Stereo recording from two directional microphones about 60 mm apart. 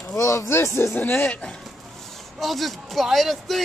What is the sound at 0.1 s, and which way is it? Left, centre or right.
Speech, left.